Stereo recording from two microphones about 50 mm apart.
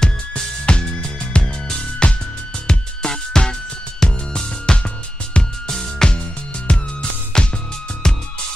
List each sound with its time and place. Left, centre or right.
0.0 s music: centre